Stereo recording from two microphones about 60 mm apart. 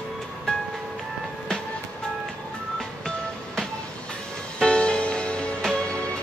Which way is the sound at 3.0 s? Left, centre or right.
Centre.